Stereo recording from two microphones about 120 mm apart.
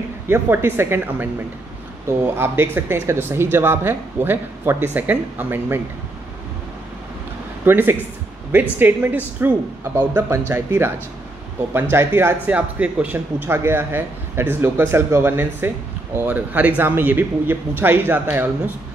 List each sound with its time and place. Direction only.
0.3 s a man's voice: 20° right (ahead or behind)
7.6 s a man's voice: 20° right (ahead or behind)